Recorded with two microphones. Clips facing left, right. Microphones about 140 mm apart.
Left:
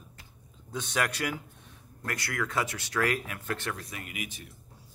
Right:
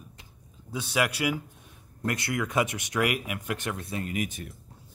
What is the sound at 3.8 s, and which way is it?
Speech, 30° right (ahead or behind).